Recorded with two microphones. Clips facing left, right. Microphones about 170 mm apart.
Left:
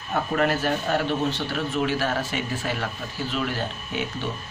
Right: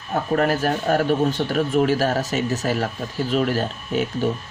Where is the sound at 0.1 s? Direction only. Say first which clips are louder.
Right 3 dB; 40° right (ahead or behind).